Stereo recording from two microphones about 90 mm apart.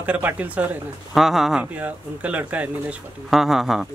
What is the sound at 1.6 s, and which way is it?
Speech, 15° right (ahead or behind).